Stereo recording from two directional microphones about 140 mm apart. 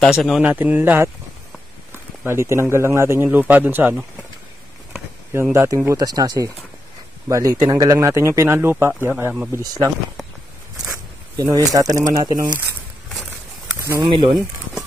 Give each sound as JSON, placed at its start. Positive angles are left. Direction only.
{"t": 0.1, "sound": "a man's voice", "side_deg": 0}
{"t": 0.5, "sound": "a man's voice", "side_deg": -15}
{"t": 2.2, "sound": "a man's voice", "side_deg": -20}
{"t": 5.3, "sound": "speech", "side_deg": -20}
{"t": 11.3, "sound": "speech", "side_deg": -25}
{"t": 13.9, "sound": "speech", "side_deg": -35}